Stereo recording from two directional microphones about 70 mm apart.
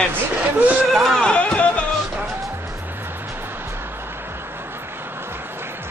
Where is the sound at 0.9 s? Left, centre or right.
Centre.